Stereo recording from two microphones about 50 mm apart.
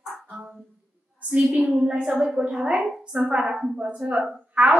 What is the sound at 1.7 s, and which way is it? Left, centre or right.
A woman's voice, centre.